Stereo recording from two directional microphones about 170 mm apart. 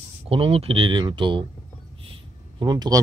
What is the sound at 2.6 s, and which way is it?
Speech, 25° right (ahead or behind).